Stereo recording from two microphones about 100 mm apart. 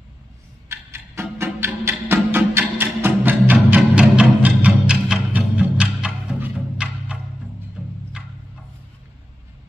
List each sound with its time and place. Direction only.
0.7 s music: 25° right (ahead or behind)
3.7 s music: 10° right (ahead or behind)